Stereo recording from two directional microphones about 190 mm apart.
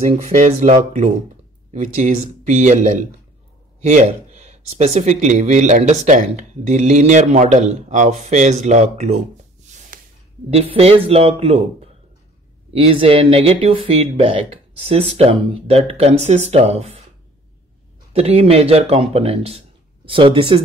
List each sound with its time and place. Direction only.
0.3 s speech: 40° right (ahead or behind)
10.5 s speech: 30° right (ahead or behind)
12.7 s speech: 30° right (ahead or behind)
18.1 s speech: 30° right (ahead or behind)